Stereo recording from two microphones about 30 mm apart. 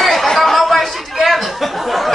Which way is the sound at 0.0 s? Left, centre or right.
Centre.